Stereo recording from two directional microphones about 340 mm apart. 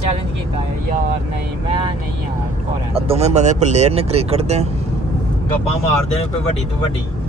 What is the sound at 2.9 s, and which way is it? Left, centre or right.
Speech, centre.